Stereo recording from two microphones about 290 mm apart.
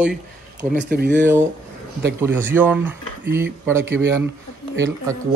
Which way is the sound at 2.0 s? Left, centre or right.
Centre.